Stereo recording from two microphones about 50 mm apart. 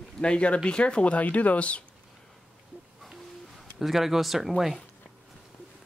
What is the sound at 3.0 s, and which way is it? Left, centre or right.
Owl, centre.